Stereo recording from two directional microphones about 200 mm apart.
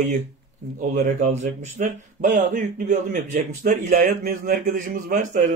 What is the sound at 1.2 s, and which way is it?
A man's voice, 35° right (ahead or behind).